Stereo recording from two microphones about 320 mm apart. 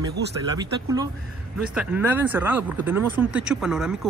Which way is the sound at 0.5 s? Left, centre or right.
Centre.